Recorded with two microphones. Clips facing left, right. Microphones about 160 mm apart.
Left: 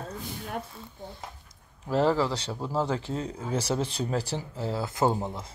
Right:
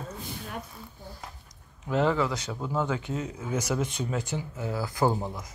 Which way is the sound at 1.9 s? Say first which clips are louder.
Left 1 dB; 35° left (ahead or behind).